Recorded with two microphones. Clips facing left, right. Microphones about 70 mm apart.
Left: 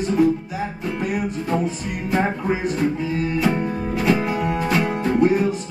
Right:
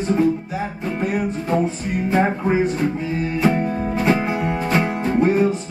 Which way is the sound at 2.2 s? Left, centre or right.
Centre.